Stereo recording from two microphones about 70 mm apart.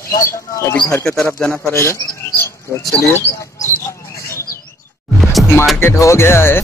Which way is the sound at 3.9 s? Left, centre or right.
Left.